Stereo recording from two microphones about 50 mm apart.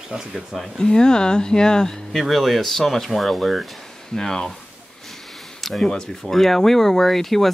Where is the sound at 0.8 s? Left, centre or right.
Centre.